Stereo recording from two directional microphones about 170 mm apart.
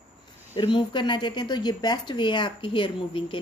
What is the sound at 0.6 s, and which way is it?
Speech, 30° left (ahead or behind).